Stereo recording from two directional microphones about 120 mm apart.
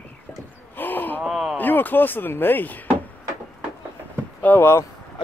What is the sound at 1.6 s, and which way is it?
Speech, 15° left (ahead or behind).